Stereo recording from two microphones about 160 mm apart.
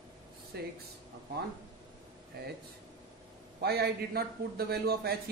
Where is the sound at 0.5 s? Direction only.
90° right.